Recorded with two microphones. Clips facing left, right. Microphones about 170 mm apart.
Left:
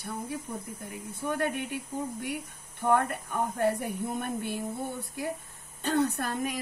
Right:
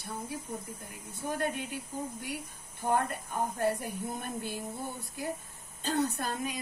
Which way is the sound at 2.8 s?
60° left (ahead or behind).